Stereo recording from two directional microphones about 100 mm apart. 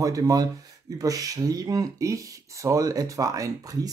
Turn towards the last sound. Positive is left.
turn(degrees=-35)  # may be behind; listen again after turning